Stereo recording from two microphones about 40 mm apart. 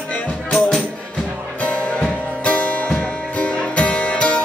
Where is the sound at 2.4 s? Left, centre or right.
Left.